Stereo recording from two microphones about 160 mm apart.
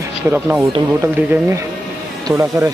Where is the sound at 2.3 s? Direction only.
20° right (ahead or behind).